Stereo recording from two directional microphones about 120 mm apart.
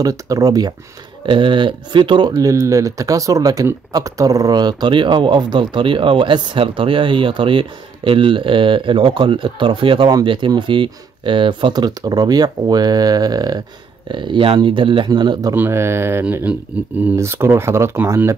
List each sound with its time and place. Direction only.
0.0 s speech: 30° right (ahead or behind)
1.2 s speech: 45° right (ahead or behind)
14.1 s speech: 40° right (ahead or behind)
15.5 s speech: 20° right (ahead or behind)